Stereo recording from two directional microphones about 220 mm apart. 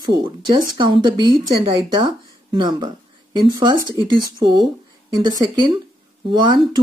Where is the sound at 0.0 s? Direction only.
20° right (ahead or behind).